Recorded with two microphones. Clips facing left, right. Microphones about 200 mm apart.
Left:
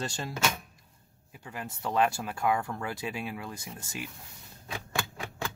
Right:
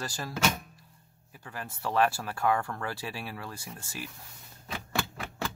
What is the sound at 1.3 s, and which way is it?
Speech, 20° left (ahead or behind).